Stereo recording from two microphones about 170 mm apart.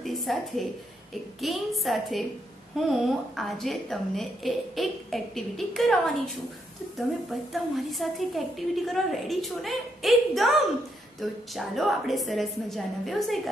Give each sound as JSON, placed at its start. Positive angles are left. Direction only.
{"t": 0.0, "sound": "a woman's voice", "side_deg": 0}
{"t": 7.5, "sound": "a woman's voice", "side_deg": 0}